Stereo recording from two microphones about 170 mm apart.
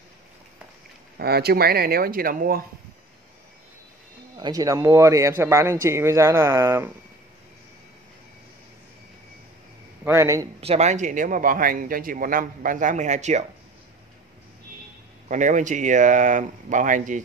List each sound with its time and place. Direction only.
1.1 s speech: 70° right (ahead or behind)
4.4 s speech: 20° right (ahead or behind)
10.0 s speech: 15° right (ahead or behind)
10.6 s speech: 40° right (ahead or behind)
15.2 s speech: 45° right (ahead or behind)